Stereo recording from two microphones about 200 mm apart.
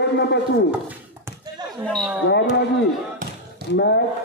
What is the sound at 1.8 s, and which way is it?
Speech, centre (ahead or behind).